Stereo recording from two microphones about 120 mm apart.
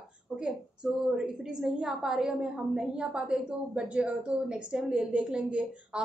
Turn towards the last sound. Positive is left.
turn(degrees=-5)  # may be behind; listen again after turning